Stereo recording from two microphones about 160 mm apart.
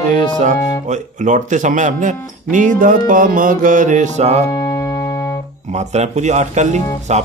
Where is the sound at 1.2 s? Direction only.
50° right (ahead or behind).